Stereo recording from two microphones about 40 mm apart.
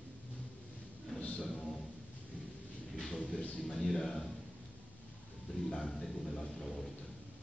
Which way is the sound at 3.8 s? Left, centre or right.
Centre.